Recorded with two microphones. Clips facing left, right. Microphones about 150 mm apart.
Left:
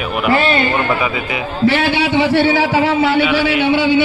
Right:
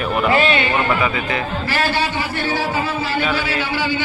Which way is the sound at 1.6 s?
70° left (ahead or behind).